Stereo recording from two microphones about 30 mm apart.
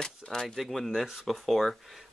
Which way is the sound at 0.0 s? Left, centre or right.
Left.